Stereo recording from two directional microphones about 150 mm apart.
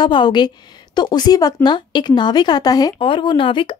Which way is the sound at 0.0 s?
30° left (ahead or behind).